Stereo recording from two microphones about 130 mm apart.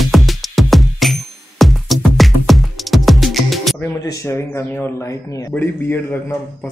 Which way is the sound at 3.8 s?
20° left (ahead or behind).